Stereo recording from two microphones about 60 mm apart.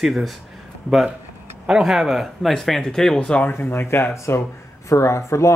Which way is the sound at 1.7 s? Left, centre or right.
Centre.